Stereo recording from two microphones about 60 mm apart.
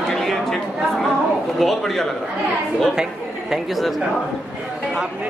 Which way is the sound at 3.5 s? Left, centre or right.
Centre.